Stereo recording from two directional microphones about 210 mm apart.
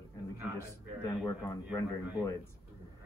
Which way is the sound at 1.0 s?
15° left (ahead or behind).